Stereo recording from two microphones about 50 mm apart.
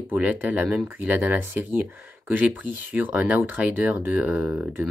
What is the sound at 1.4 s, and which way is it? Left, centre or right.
Speech, right.